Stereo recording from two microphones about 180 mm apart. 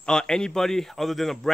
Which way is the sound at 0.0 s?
5° left (ahead or behind).